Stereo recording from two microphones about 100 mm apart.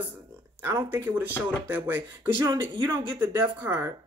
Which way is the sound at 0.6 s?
20° right (ahead or behind).